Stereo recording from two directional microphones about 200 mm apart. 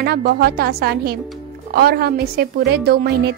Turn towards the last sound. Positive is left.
turn(degrees=-50)  # may be behind; listen again after turning